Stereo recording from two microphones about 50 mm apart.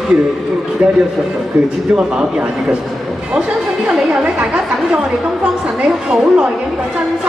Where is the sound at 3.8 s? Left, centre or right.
Right.